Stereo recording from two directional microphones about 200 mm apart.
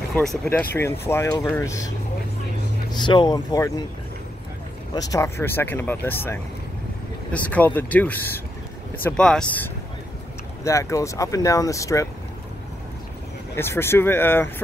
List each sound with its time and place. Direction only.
0.1 s speech: 5° left (ahead or behind)
2.9 s speech: 20° left (ahead or behind)
4.9 s speech: 20° left (ahead or behind)
13.6 s speech: 10° left (ahead or behind)